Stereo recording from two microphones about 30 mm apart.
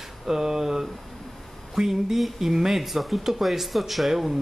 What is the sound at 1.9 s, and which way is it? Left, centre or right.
Speech, centre.